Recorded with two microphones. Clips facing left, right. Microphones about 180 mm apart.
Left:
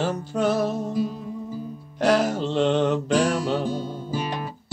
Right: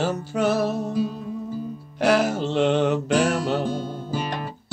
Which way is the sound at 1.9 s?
5° right (ahead or behind).